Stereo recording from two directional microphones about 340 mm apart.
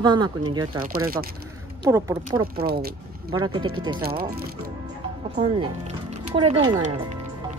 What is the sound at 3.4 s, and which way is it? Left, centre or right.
Speech, centre.